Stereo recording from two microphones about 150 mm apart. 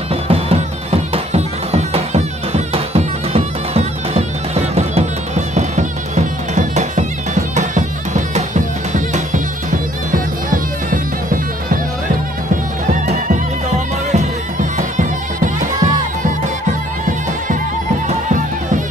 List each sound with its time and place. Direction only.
0.1 s music: 40° right (ahead or behind); by 11.8 s 65° right (ahead or behind)
12.8 s music: 55° right (ahead or behind)
18.0 s music: 55° right (ahead or behind)